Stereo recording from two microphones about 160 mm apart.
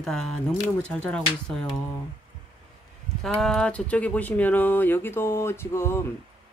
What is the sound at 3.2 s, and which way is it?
Speech, 5° left (ahead or behind).